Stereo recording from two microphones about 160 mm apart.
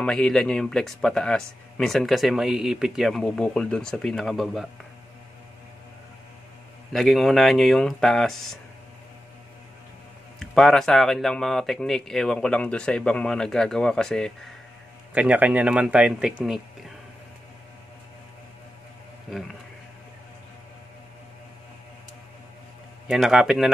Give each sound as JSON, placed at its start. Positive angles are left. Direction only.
{"t": 0.0, "sound": "speech", "side_deg": 5}
{"t": 6.9, "sound": "speech", "side_deg": 0}
{"t": 10.4, "sound": "speech", "side_deg": 0}
{"t": 15.1, "sound": "speech", "side_deg": -10}
{"t": 19.3, "sound": "speech", "side_deg": 0}
{"t": 23.0, "sound": "speech", "side_deg": 0}